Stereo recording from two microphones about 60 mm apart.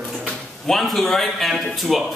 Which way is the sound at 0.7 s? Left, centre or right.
Centre.